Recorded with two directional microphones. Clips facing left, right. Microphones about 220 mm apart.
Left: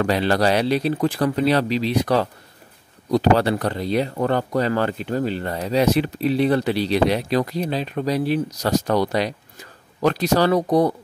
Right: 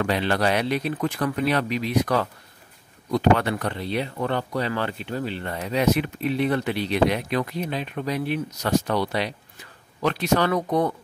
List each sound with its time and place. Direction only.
0.0 s speech: 40° left (ahead or behind)